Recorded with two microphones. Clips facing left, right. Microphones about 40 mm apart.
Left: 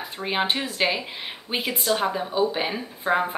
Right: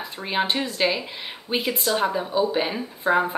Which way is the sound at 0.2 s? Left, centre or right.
Centre.